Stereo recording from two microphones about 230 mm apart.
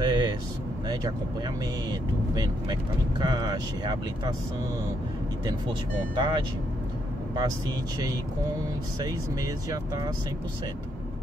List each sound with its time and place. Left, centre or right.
0.0 s vehicle: centre
1.9 s speech: centre
5.4 s speech: centre
9.0 s speech: centre